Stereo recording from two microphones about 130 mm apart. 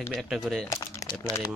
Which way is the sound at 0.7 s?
25° left (ahead or behind).